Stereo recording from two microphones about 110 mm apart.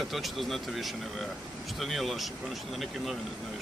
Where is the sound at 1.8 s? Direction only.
Centre (ahead or behind).